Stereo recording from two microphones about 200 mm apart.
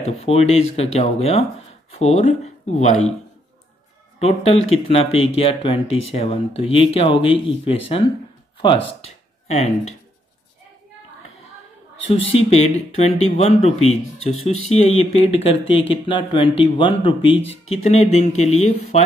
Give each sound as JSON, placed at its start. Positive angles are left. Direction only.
{"t": 0.0, "sound": "speech", "side_deg": 30}
{"t": 4.2, "sound": "speech", "side_deg": 30}
{"t": 12.3, "sound": "speech", "side_deg": 30}